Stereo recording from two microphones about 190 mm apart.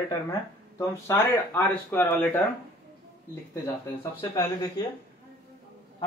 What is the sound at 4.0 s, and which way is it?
Speech, 25° left (ahead or behind).